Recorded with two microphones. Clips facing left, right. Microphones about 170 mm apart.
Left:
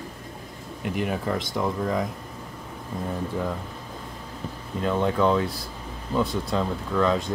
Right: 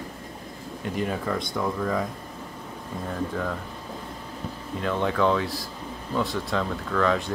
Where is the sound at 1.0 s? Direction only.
10° left (ahead or behind).